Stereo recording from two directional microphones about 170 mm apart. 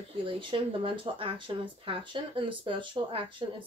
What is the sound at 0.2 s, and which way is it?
Speech, 30° right (ahead or behind).